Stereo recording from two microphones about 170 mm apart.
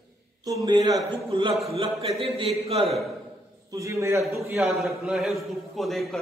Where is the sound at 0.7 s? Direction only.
25° right (ahead or behind).